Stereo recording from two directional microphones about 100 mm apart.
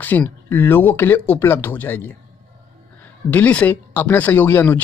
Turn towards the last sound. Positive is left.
turn(degrees=20)  # may be behind; listen again after turning